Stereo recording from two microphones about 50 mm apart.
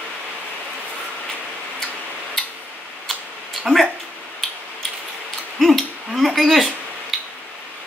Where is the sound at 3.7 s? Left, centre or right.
Centre.